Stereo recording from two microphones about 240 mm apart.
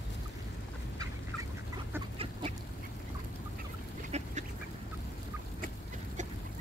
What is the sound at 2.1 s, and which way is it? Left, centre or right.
Duck, right.